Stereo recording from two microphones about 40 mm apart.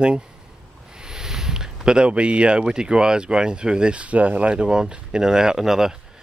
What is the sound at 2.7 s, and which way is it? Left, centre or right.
Speech, centre.